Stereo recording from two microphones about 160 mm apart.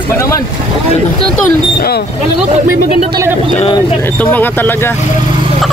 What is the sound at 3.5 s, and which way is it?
Speech, 35° left (ahead or behind).